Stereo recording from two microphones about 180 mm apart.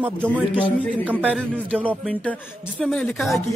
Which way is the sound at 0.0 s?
10° right (ahead or behind).